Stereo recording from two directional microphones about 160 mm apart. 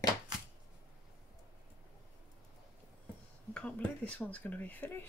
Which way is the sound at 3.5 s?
10° left (ahead or behind).